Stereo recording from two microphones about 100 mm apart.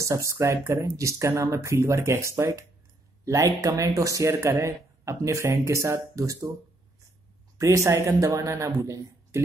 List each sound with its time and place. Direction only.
0.0 s speech: 30° right (ahead or behind)
7.5 s speech: 30° right (ahead or behind)